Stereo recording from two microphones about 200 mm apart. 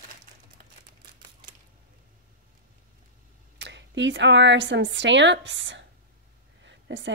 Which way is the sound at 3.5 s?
60° right (ahead or behind).